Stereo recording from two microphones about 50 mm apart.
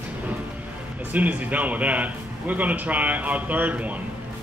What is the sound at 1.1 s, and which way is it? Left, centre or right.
Speech, right.